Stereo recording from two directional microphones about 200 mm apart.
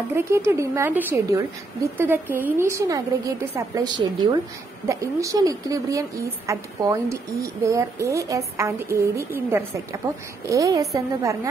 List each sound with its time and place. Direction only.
0.1 s a woman's voice: 15° right (ahead or behind)